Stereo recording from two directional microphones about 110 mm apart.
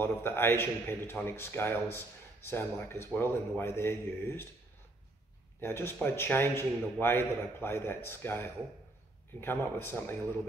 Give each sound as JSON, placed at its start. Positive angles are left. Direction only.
{"t": 0.0, "sound": "a man's voice", "side_deg": 20}
{"t": 5.6, "sound": "a man's voice", "side_deg": 20}